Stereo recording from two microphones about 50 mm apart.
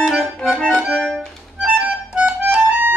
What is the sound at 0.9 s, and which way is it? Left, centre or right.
Music, centre.